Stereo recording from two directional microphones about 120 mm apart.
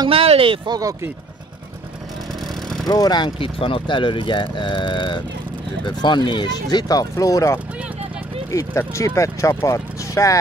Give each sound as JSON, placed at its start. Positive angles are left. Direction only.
{"t": 0.1, "sound": "speech", "side_deg": -50}
{"t": 0.7, "sound": "speech", "side_deg": -30}
{"t": 2.4, "sound": "vehicle", "side_deg": 0}
{"t": 2.9, "sound": "speech", "side_deg": 35}
{"t": 3.3, "sound": "speech", "side_deg": 50}